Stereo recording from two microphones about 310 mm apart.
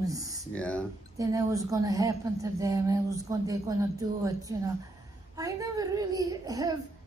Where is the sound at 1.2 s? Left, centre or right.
Centre.